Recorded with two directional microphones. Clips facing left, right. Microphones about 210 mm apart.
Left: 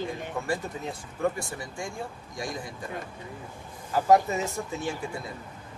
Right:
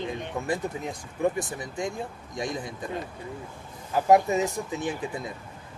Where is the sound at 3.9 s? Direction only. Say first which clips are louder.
Right 1 dB; 15° right (ahead or behind).